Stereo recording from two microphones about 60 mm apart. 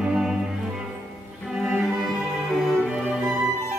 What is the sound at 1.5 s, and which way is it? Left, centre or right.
Music, centre.